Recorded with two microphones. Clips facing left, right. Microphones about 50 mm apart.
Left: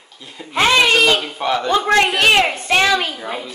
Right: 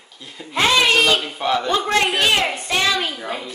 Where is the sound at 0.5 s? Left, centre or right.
Left.